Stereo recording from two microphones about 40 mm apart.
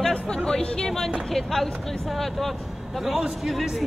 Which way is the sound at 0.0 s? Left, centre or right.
Centre.